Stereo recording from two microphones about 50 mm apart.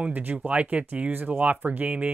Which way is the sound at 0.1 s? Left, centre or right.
Right.